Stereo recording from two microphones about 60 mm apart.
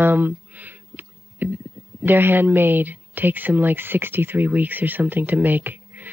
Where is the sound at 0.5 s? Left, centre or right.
Right.